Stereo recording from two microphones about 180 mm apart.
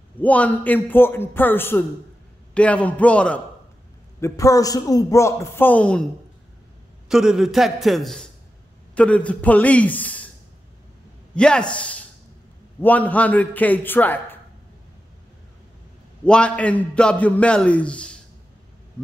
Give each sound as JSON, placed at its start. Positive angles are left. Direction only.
{"t": 0.2, "sound": "a man's voice", "side_deg": 10}
{"t": 4.2, "sound": "a man's voice", "side_deg": 20}
{"t": 7.1, "sound": "a man's voice", "side_deg": -5}
{"t": 11.3, "sound": "a man's voice", "side_deg": 5}
{"t": 16.3, "sound": "a man's voice", "side_deg": 5}